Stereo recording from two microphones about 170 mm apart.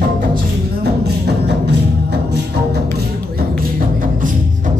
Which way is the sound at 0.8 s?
70° right (ahead or behind).